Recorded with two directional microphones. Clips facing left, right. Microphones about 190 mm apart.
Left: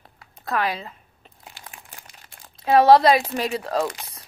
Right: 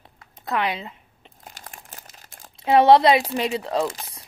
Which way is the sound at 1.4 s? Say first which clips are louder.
Right 1 dB; 40° right (ahead or behind).